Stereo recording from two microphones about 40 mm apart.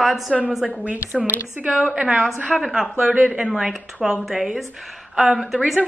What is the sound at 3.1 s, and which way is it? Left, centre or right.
Speech, right.